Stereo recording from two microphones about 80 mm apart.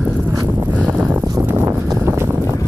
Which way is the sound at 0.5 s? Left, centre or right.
Right.